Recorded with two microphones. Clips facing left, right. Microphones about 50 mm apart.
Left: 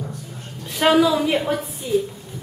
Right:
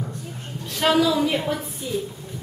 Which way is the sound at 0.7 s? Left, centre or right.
Centre.